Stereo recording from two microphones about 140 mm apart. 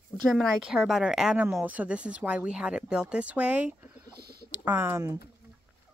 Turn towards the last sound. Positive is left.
turn(degrees=-20)  # may be behind; listen again after turning